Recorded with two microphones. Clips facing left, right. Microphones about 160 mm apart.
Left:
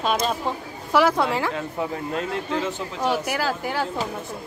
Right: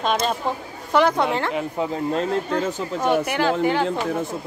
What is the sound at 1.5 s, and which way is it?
Speech, 20° right (ahead or behind).